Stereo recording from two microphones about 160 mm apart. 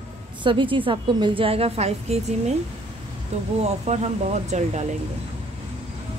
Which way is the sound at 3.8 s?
45° right (ahead or behind).